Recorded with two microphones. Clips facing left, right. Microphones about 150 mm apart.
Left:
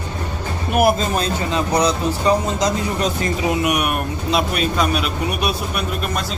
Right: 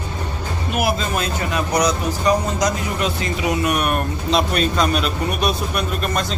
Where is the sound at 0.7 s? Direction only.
50° left (ahead or behind).